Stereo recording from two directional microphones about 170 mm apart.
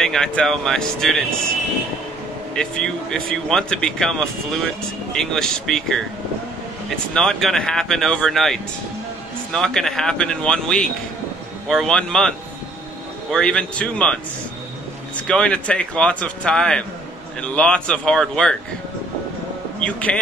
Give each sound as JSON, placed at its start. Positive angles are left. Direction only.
{"t": 0.0, "sound": "speech", "side_deg": 5}
{"t": 2.5, "sound": "speech", "side_deg": 5}
{"t": 7.2, "sound": "speech", "side_deg": 0}
{"t": 15.2, "sound": "speech", "side_deg": 5}
{"t": 19.8, "sound": "speech", "side_deg": 5}